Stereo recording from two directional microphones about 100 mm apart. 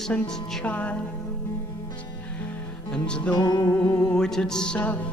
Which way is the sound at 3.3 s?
45° left (ahead or behind).